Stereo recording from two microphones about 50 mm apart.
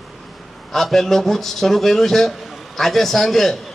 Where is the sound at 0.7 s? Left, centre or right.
Centre.